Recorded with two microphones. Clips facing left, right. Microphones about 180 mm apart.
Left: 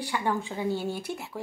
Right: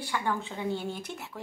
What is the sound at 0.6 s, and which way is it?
Speech, 5° left (ahead or behind).